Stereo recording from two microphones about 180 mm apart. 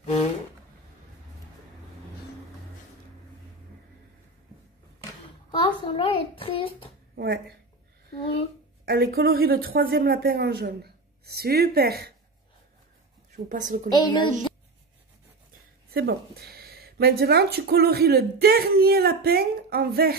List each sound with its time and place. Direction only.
0.0 s a sound: 35° left (ahead or behind)
5.5 s a child's voice: 30° left (ahead or behind)
7.2 s speech: 65° right (ahead or behind)
8.8 s speech: 60° right (ahead or behind)
13.5 s a woman's voice: 45° right (ahead or behind)
13.8 s speech: 25° left (ahead or behind)
15.9 s speech: 60° right (ahead or behind)